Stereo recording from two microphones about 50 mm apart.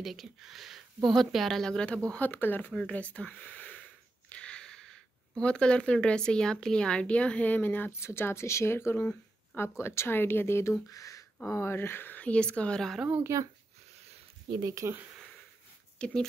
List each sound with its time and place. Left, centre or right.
0.0 s speech: centre
2.1 s speech: left
2.9 s speech: left
7.9 s speech: left
8.7 s speech: left
9.6 s speech: left
10.0 s speech: left
12.2 s speech: left
13.3 s speech: right
14.7 s speech: right
16.0 s speech: left